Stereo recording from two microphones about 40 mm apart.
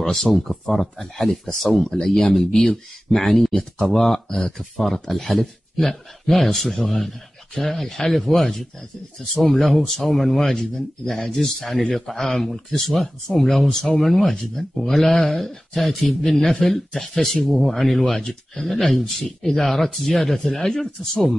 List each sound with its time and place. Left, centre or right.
0.1 s speech: centre
14.0 s speech: centre